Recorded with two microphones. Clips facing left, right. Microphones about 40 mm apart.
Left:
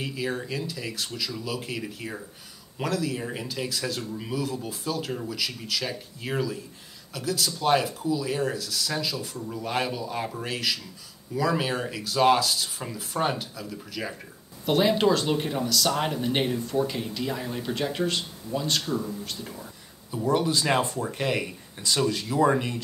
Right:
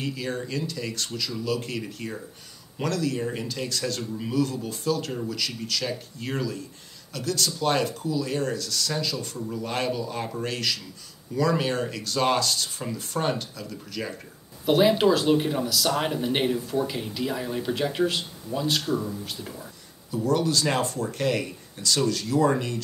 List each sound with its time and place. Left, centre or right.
0.0 s speech: centre
20.2 s speech: centre